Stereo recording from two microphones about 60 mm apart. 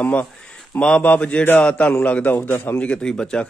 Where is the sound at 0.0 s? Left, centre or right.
Left.